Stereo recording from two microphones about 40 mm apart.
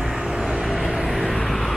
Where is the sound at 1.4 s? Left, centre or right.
Centre.